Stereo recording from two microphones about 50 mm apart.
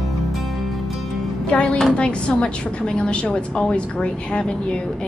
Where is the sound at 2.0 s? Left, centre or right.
Left.